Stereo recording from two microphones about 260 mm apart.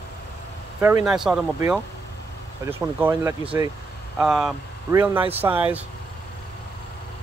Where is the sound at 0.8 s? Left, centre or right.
Centre.